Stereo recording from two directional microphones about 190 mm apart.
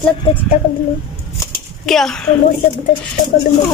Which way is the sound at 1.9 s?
Centre (ahead or behind).